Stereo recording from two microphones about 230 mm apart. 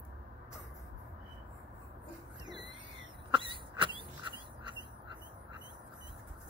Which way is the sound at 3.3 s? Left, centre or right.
Right.